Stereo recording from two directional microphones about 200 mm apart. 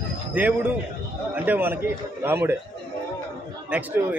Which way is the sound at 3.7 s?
10° right (ahead or behind).